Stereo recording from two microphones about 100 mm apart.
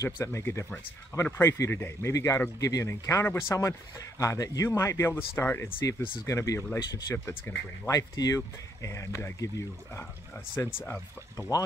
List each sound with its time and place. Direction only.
0.0 s speech: 30° left (ahead or behind)
6.8 s speech: 45° left (ahead or behind)
7.2 s speech: 30° left (ahead or behind)
11.3 s speech: 35° left (ahead or behind)